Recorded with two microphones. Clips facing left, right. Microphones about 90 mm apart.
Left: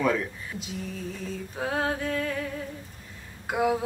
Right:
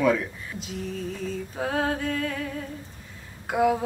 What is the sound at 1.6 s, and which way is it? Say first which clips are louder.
Music: right 1 dB; centre (ahead or behind).